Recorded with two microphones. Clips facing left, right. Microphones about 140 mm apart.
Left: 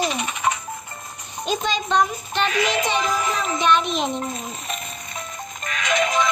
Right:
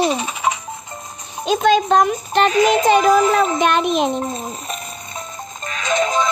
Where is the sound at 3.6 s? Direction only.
55° right (ahead or behind).